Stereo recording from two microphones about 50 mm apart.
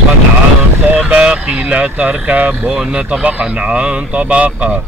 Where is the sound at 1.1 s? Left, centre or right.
Right.